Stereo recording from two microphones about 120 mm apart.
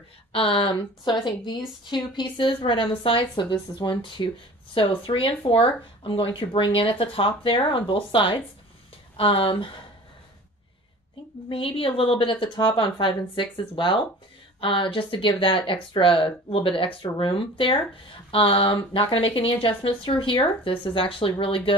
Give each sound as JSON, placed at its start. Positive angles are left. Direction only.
{"t": 0.3, "sound": "a woman's voice", "side_deg": 50}
{"t": 11.4, "sound": "speech", "side_deg": 50}